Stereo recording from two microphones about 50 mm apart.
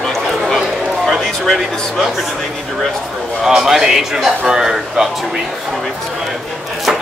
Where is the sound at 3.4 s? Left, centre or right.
Centre.